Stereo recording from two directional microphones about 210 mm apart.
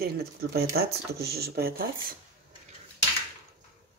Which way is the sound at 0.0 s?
50° right (ahead or behind).